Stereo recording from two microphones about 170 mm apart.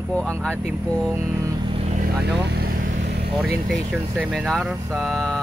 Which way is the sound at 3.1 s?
75° right (ahead or behind).